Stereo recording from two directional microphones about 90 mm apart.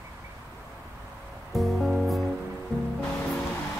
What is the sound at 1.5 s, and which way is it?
Music, centre (ahead or behind).